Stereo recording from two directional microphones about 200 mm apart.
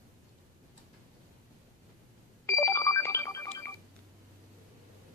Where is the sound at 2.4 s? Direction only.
15° left (ahead or behind).